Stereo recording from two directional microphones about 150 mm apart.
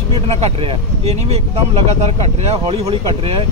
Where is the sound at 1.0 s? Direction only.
45° right (ahead or behind).